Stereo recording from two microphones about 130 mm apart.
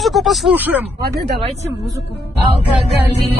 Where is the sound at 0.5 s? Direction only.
15° right (ahead or behind).